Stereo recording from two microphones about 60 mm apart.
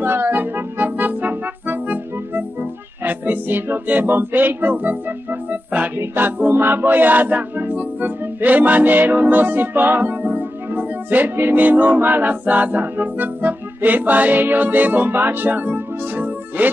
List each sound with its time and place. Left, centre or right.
0.0 s music: right